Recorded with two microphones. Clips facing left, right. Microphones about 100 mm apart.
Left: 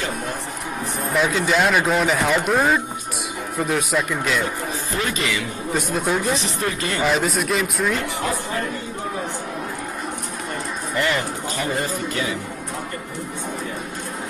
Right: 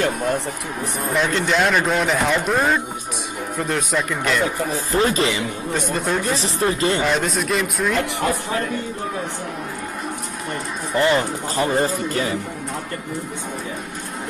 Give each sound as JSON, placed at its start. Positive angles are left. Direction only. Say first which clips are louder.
{"t": 1.1, "sound": "speech", "louder": "even", "side_deg": 5}
{"t": 4.9, "sound": "speech", "louder": "right 6 dB", "side_deg": -35}
{"t": 5.7, "sound": "speech", "louder": "left 1 dB", "side_deg": 0}
{"t": 6.4, "sound": "speech", "louder": "right 5 dB", "side_deg": -30}
{"t": 7.0, "sound": "speech", "louder": "even", "side_deg": 0}
{"t": 11.0, "sound": "speech", "louder": "right 5 dB", "side_deg": -30}